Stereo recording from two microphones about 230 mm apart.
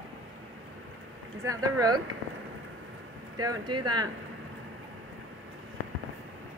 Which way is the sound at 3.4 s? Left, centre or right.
Centre.